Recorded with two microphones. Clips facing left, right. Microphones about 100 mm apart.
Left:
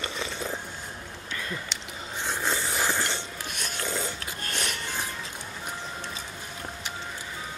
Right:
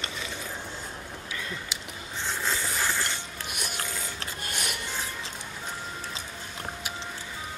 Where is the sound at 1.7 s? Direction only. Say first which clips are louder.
Even; 5° right (ahead or behind).